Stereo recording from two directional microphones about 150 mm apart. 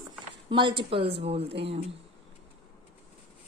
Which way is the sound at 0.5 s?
35° right (ahead or behind).